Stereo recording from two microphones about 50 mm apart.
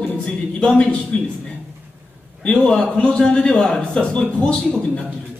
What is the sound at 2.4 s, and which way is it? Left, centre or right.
A man's voice, centre.